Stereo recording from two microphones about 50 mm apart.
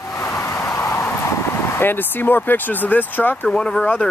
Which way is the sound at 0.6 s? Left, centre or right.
Left.